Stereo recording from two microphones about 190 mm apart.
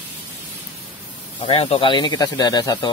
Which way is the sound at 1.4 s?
30° left (ahead or behind).